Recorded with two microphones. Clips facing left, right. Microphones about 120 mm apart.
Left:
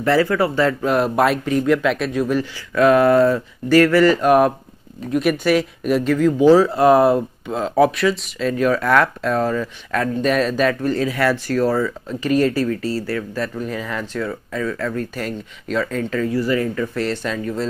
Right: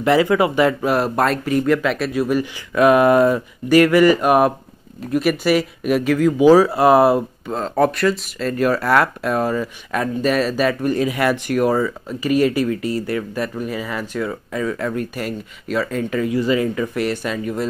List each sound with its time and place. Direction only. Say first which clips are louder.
0.0 s speech: right 2 dB; 15° right (ahead or behind)
0.9 s speech: left 1 dB; centre (ahead or behind)